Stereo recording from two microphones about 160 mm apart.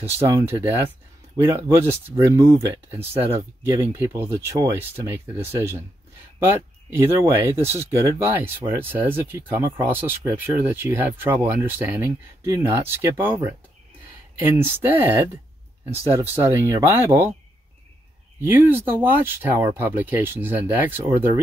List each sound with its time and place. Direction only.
0.0 s speech: 15° right (ahead or behind)
18.4 s speech: 15° right (ahead or behind)